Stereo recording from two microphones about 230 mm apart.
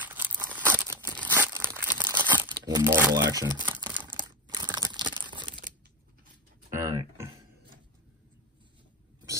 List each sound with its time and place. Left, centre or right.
0.0 s crumpling: centre
3.9 s camera: centre
4.2 s crumpling: centre
6.7 s a sound: centre